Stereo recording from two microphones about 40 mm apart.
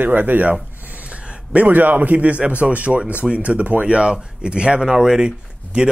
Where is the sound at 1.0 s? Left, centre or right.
Right.